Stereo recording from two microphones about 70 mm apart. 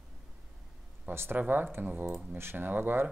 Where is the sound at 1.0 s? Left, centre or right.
Right.